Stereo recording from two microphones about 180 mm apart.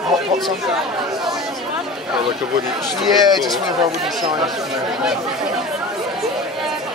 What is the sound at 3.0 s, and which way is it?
Speech, centre (ahead or behind).